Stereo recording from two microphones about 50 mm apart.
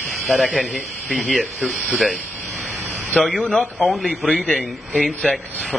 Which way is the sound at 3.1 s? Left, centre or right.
Centre.